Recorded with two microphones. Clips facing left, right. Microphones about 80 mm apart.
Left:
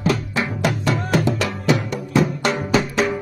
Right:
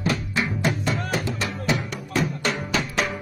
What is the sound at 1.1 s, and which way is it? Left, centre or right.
Music, left.